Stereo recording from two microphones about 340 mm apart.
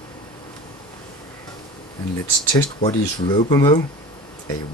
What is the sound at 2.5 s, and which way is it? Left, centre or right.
Speech, centre.